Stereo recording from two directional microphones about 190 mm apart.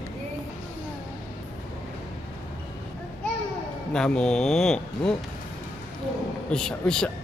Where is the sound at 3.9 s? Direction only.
5° left (ahead or behind).